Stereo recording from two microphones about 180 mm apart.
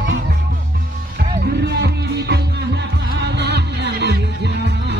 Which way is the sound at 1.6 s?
65° right (ahead or behind).